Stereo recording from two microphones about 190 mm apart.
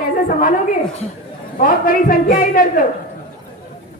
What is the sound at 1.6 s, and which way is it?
A woman's voice, 50° left (ahead or behind).